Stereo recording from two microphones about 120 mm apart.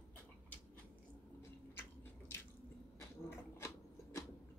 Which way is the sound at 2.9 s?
20° left (ahead or behind).